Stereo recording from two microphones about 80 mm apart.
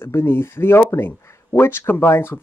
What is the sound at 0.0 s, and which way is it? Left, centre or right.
Speech, left.